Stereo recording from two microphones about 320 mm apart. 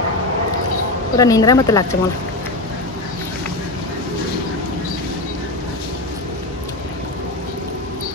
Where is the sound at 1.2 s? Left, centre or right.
Centre.